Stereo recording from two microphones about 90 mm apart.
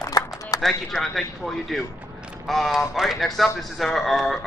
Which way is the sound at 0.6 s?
Centre (ahead or behind).